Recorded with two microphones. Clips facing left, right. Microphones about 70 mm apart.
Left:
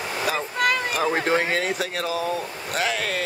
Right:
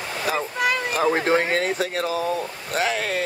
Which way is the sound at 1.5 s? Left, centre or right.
Right.